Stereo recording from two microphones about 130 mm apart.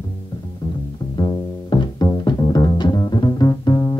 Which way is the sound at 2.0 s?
30° left (ahead or behind).